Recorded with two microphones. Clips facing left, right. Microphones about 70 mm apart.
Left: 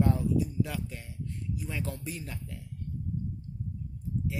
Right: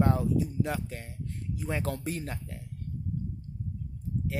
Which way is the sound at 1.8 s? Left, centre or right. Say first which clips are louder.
Right 4 dB; right.